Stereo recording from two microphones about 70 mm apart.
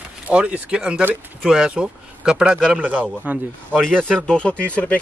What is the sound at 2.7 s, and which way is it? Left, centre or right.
A man's voice, right.